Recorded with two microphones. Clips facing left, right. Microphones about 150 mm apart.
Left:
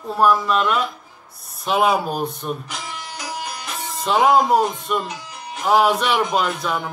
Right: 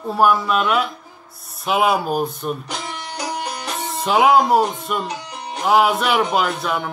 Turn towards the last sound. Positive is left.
turn(degrees=0)  # may be behind; listen again after turning